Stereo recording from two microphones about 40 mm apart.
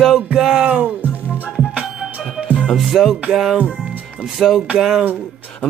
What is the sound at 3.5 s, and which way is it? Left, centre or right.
Speech, right.